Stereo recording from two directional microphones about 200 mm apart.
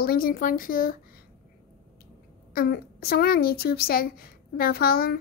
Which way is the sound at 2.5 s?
50° left (ahead or behind).